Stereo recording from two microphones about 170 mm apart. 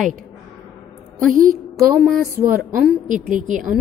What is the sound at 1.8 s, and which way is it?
Speech, centre (ahead or behind).